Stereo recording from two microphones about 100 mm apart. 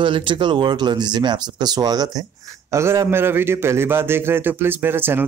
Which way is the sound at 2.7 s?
30° right (ahead or behind).